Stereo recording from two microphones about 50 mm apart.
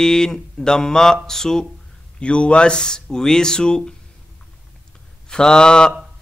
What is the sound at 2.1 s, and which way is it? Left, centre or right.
Speech, left.